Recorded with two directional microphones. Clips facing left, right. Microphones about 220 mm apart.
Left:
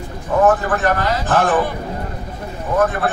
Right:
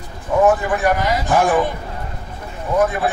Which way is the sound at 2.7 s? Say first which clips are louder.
Even; 10° right (ahead or behind).